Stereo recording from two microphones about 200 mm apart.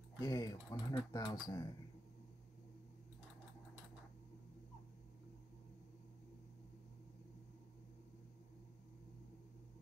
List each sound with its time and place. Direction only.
0.2 s speech: 20° left (ahead or behind)